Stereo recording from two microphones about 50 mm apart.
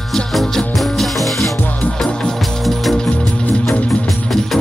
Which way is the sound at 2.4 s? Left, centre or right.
Centre.